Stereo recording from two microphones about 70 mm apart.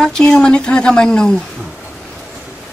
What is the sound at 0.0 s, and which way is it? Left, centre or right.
A woman's voice, centre.